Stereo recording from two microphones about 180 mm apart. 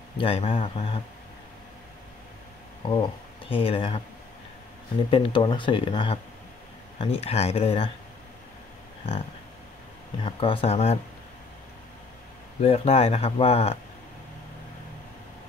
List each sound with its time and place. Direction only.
0.2 s speech: 30° left (ahead or behind)
2.8 s speech: 25° left (ahead or behind)
5.1 s speech: 25° left (ahead or behind)
10.2 s speech: 30° left (ahead or behind)
12.6 s speech: 35° left (ahead or behind)